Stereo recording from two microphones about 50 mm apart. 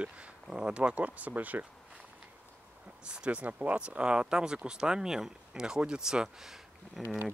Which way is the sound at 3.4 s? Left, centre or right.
Right.